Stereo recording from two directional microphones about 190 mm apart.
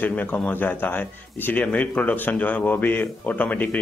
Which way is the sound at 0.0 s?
10° left (ahead or behind).